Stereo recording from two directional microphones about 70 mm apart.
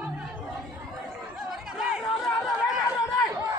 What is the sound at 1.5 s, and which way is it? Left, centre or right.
Chatter, centre.